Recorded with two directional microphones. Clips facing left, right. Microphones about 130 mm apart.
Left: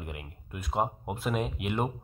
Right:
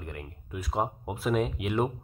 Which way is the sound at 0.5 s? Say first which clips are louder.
Even; centre (ahead or behind).